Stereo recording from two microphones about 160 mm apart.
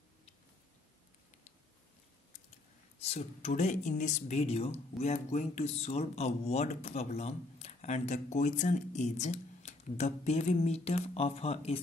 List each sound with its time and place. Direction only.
3.0 s speech: 40° left (ahead or behind)